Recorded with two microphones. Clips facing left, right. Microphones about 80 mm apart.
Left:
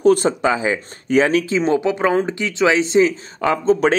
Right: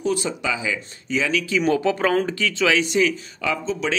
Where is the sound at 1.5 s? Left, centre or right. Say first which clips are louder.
Left 2 dB; left.